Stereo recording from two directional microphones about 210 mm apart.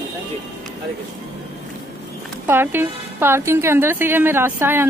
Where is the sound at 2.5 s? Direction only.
10° right (ahead or behind).